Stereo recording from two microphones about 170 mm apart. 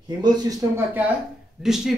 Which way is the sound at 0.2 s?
20° right (ahead or behind).